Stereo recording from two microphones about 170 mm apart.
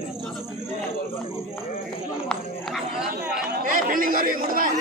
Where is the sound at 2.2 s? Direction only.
Centre (ahead or behind).